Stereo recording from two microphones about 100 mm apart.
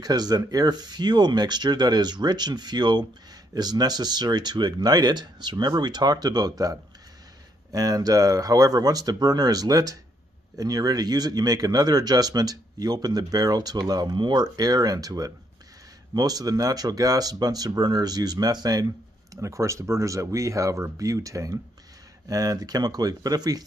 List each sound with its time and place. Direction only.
0.0 s speech: 40° right (ahead or behind)